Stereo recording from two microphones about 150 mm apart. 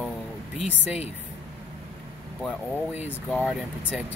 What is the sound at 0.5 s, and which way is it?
Speech, 5° right (ahead or behind).